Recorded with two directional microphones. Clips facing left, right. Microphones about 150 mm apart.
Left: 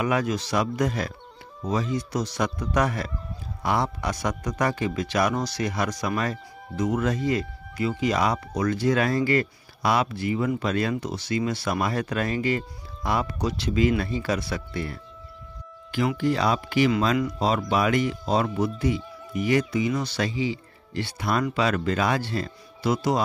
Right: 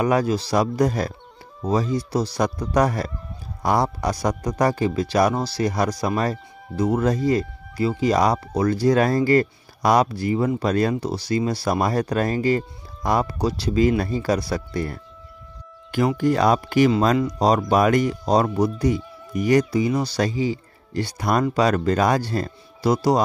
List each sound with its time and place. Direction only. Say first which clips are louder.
0.0 s speech: right 5 dB; 35° right (ahead or behind)